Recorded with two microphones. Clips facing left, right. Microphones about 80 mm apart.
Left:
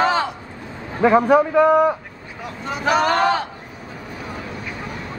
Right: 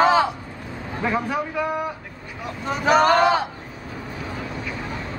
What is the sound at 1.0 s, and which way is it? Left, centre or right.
Speech, left.